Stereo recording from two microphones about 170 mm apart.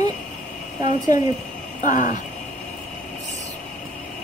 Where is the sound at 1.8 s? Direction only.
45° left (ahead or behind).